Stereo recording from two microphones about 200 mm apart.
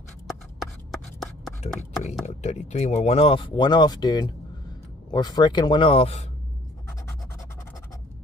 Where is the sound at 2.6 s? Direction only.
35° left (ahead or behind).